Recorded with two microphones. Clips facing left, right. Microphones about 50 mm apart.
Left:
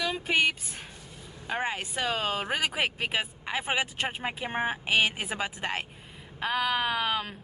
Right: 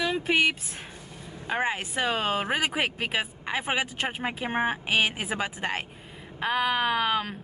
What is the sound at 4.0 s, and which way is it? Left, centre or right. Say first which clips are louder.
Speech: right 2 dB; right.